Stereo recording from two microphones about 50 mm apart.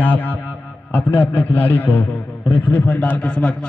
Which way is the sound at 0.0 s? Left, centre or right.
Left.